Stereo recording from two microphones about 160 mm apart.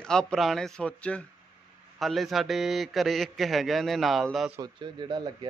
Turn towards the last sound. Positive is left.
turn(degrees=-30)  # may be behind; listen again after turning